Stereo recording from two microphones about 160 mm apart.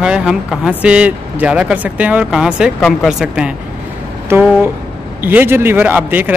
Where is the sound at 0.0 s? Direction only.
5° right (ahead or behind).